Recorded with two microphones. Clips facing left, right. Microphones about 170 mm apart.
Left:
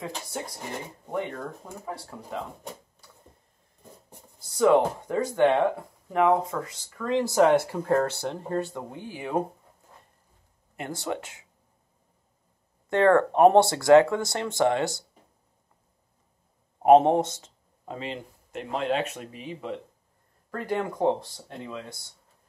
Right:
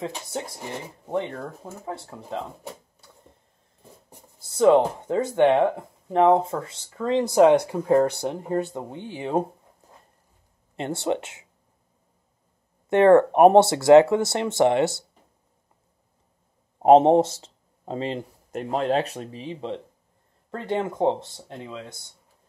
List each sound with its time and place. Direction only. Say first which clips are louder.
1.6 s speech: right 2 dB; 25° right (ahead or behind)
4.6 s speech: right 3 dB; 25° right (ahead or behind)
10.8 s speech: right 6 dB; 25° right (ahead or behind)
12.9 s speech: right 5 dB; 20° right (ahead or behind)
16.8 s speech: right 3 dB; 25° right (ahead or behind)